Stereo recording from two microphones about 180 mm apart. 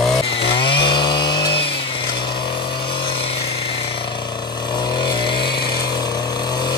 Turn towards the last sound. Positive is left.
turn(degrees=25)  # may be behind; listen again after turning